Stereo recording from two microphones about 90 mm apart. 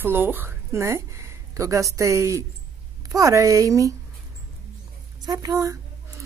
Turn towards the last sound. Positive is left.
turn(degrees=-40)  # may be behind; listen again after turning